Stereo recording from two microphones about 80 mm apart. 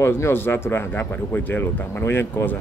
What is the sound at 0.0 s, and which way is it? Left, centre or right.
A man's voice, left.